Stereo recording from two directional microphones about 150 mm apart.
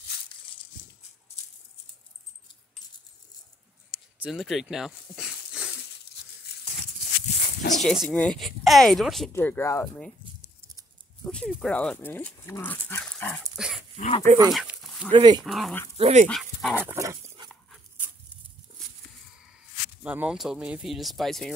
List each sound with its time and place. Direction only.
0.1 s a sound: 90° left
3.9 s a sound: 5° right (ahead or behind)
6.5 s a sound: 90° left
7.2 s dog: 50° left (ahead or behind)
7.8 s speech: centre (ahead or behind)
9.3 s speech: 15° left (ahead or behind)
11.2 s speech: centre (ahead or behind)
13.6 s dog: 5° right (ahead or behind)
15.0 s speech: 30° right (ahead or behind)
15.4 s speech: centre (ahead or behind)
16.0 s speech: 50° right (ahead or behind)
16.3 s speech: 5° left (ahead or behind)
16.8 s dog: 20° right (ahead or behind)
20.0 s speech: 10° right (ahead or behind)